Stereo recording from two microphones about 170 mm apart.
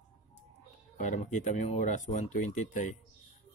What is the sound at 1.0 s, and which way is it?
Speech, 45° left (ahead or behind).